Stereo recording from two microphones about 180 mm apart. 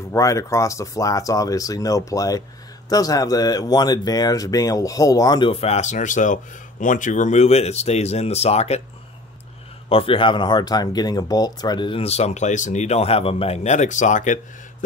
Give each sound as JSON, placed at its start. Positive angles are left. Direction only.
{"t": 0.1, "sound": "speech", "side_deg": 15}
{"t": 9.8, "sound": "speech", "side_deg": 30}